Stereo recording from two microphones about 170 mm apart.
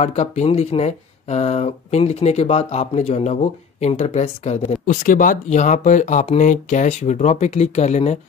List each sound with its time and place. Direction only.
0.0 s speech: 40° left (ahead or behind)